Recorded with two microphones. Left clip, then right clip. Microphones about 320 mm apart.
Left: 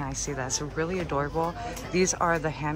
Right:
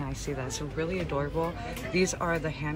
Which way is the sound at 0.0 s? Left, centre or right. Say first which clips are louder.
Left 3 dB; centre.